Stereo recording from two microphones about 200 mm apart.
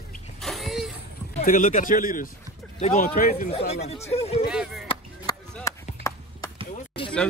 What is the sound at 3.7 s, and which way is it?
Speech, 30° left (ahead or behind).